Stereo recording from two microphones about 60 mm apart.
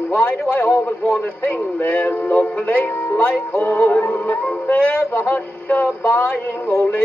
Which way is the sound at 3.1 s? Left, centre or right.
Left.